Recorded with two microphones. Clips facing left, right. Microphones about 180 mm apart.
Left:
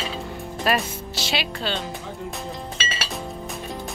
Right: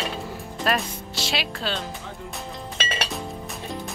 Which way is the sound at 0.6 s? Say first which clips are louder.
Left 2 dB; centre (ahead or behind).